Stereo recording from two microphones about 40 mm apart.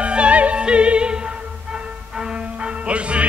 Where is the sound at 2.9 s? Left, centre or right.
Right.